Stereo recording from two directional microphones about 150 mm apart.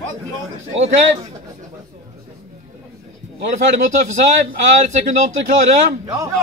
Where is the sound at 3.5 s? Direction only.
55° right (ahead or behind).